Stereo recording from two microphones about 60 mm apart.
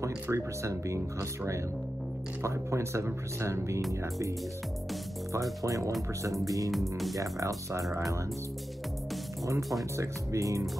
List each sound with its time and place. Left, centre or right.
0.0 s speech: right
5.3 s speech: right
5.8 s speech: centre
6.4 s speech: right
6.7 s speech: centre
7.2 s speech: right
9.6 s speech: centre
9.9 s speech: right